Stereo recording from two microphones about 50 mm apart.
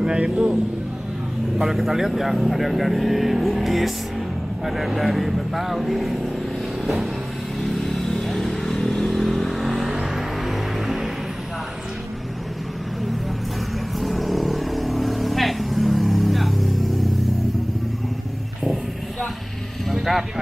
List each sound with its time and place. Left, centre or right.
0.0 s speech: centre
1.6 s speech: centre
7.6 s vehicle: centre
13.9 s vehicle: centre
19.9 s vehicle: centre